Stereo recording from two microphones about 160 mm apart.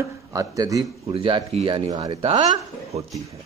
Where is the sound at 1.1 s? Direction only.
35° right (ahead or behind).